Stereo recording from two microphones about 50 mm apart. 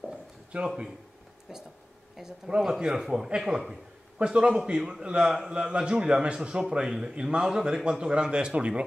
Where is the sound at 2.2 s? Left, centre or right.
Centre.